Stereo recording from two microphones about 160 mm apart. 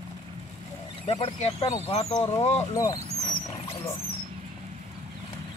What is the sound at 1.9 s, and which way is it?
Speech, 40° left (ahead or behind).